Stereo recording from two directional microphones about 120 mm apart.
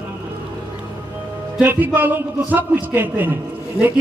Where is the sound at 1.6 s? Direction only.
15° right (ahead or behind).